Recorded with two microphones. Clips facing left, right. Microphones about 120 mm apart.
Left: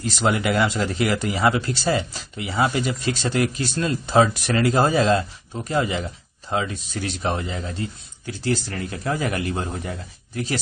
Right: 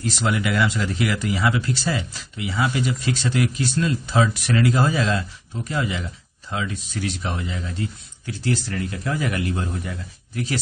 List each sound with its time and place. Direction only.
0.2 s speech: 40° left (ahead or behind)